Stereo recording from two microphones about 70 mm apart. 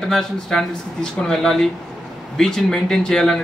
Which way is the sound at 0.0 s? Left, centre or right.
Centre.